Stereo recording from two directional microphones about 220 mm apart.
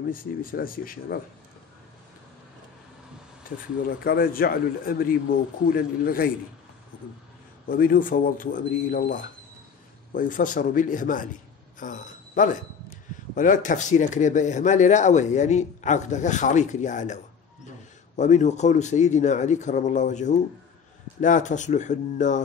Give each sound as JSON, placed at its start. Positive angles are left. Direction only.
{"t": 0.1, "sound": "speech", "side_deg": 40}
{"t": 3.4, "sound": "a man's voice", "side_deg": 40}
{"t": 7.6, "sound": "speech", "side_deg": 40}